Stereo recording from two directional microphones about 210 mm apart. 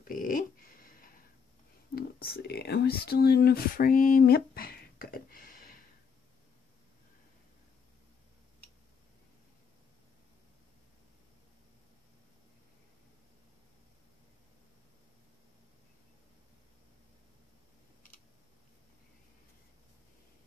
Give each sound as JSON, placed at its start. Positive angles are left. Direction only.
{"t": 0.0, "sound": "dog", "side_deg": 40}
{"t": 2.0, "sound": "speech", "side_deg": 50}